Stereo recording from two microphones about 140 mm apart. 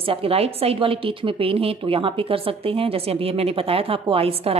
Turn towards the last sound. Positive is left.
turn(degrees=-45)  # may be behind; listen again after turning